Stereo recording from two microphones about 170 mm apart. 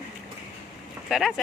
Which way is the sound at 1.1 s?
Centre (ahead or behind).